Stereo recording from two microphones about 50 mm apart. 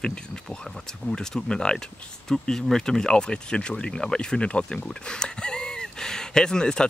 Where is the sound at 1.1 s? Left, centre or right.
Centre.